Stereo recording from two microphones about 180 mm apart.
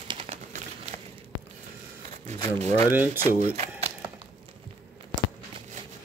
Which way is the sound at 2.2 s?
35° right (ahead or behind).